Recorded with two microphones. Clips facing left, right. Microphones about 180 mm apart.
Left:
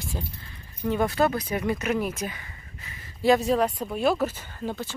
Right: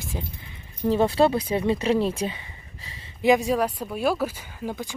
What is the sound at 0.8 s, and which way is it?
Speech, 30° right (ahead or behind).